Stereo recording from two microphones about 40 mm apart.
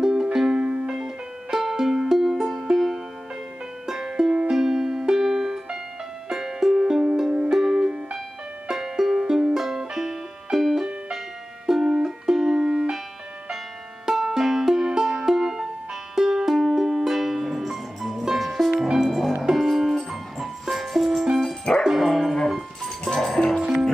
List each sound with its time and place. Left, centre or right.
0.0 s music: centre
0.6 s music: right
0.9 s music: centre
14.0 s music: centre
21.8 s dog: centre
22.8 s music: centre
23.6 s music: centre